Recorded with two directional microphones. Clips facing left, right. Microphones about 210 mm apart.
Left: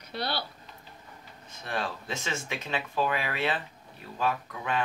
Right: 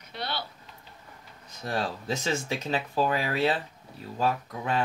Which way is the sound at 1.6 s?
35° right (ahead or behind).